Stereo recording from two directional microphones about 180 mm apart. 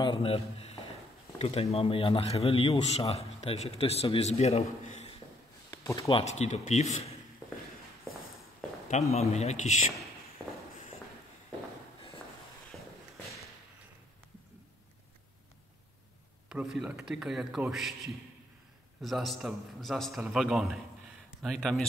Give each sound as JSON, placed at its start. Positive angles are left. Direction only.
{"t": 0.0, "sound": "a man's voice", "side_deg": 30}
{"t": 5.7, "sound": "a man's voice", "side_deg": 20}
{"t": 9.1, "sound": "a man's voice", "side_deg": 35}
{"t": 16.4, "sound": "a man's voice", "side_deg": -5}